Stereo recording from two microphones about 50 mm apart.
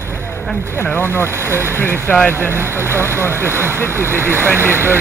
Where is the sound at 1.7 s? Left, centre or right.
Left.